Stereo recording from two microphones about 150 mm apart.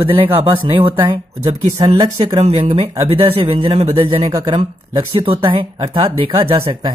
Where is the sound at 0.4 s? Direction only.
35° right (ahead or behind).